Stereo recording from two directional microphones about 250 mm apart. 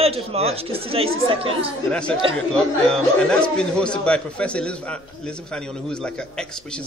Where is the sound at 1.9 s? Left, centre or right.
Centre.